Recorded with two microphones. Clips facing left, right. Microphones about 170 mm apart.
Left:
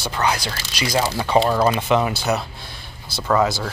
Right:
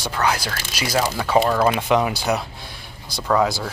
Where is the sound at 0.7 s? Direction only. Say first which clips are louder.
Left 1 dB; 10° right (ahead or behind).